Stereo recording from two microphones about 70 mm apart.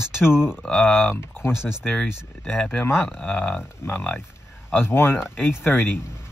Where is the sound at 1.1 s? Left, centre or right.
Left.